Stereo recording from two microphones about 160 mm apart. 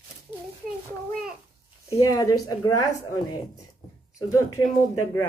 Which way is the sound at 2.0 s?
20° left (ahead or behind).